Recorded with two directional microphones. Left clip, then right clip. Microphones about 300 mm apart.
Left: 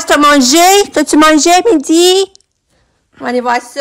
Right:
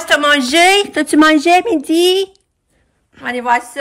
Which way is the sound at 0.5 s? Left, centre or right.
Centre.